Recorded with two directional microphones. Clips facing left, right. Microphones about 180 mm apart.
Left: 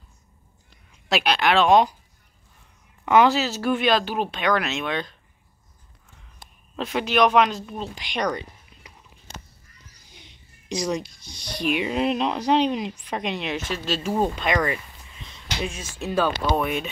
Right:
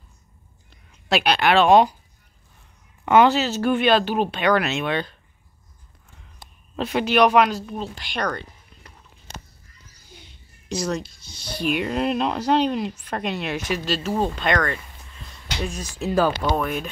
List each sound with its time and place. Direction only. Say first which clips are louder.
1.0 s speech: right 2 dB; centre (ahead or behind)
3.1 s speech: right 2 dB; centre (ahead or behind)
6.8 s speech: right 2 dB; centre (ahead or behind)
10.1 s a sound: right 4 dB; 5° right (ahead or behind)
11.0 s speech: even; 5° right (ahead or behind)
15.7 s speech: right 4 dB; 35° right (ahead or behind)
16.1 s speech: right 2 dB; 10° right (ahead or behind)